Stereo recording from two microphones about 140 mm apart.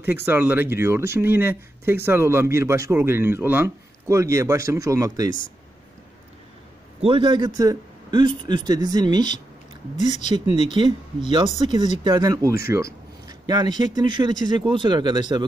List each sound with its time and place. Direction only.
0.0 s speech: 15° right (ahead or behind)
7.0 s a man's voice: 40° right (ahead or behind)
9.9 s speech: 60° left (ahead or behind)
10.7 s a man's voice: 35° right (ahead or behind)